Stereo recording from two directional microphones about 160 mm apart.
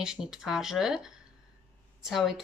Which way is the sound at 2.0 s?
5° right (ahead or behind).